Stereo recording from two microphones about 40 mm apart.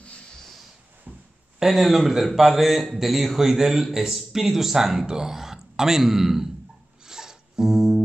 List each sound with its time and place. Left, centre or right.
0.4 s snort: centre
1.1 s a sound: right
1.6 s a man's voice: centre
7.1 s music: centre